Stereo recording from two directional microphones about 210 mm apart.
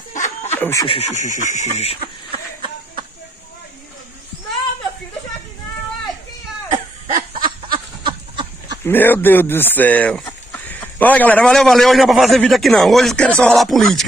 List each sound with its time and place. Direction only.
0.1 s snicker: 35° left (ahead or behind)
0.6 s speech: 10° left (ahead or behind)
0.8 s speech: 30° left (ahead or behind)
7.1 s snicker: 40° right (ahead or behind)
7.7 s chicken: 20° right (ahead or behind)
8.8 s speech: 10° left (ahead or behind)